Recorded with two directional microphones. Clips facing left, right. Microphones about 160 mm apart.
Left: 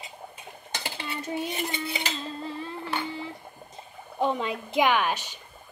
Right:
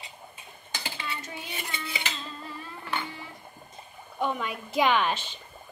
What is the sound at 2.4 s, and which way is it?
Music, 30° left (ahead or behind).